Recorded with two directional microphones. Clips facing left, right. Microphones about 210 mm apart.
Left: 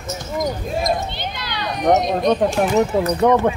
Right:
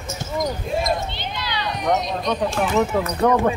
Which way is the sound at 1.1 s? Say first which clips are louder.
Even; 50° left (ahead or behind).